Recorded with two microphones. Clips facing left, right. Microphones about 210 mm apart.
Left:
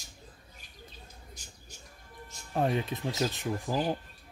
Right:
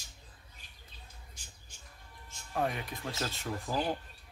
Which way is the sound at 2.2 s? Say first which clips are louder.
Left 4 dB; 30° left (ahead or behind).